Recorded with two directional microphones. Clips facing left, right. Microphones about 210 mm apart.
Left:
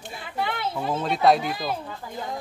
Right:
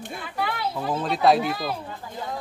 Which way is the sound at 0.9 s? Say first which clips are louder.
Even; centre (ahead or behind).